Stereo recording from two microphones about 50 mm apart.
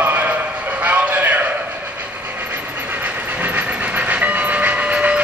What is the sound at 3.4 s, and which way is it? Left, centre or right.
Train, right.